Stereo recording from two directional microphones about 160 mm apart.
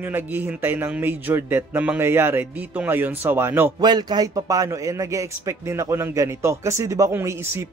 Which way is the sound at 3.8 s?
25° right (ahead or behind).